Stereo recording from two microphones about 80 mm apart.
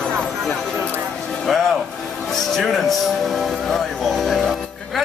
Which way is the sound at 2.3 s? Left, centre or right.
Centre.